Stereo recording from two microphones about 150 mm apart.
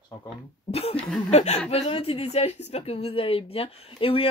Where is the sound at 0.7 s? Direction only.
40° left (ahead or behind).